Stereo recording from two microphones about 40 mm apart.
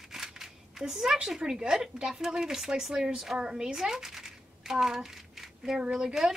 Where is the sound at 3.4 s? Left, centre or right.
Right.